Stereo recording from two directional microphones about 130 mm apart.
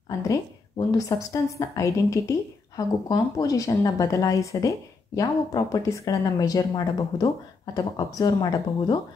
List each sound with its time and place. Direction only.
0.2 s a woman's voice: 25° left (ahead or behind)